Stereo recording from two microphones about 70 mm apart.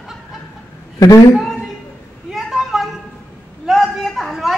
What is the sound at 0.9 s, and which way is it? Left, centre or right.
Speech, left.